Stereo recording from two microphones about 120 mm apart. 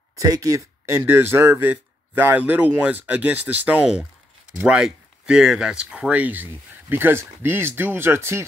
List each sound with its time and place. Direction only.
0.1 s speech: 30° right (ahead or behind)